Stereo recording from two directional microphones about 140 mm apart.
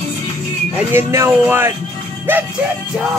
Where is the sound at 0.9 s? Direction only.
20° right (ahead or behind).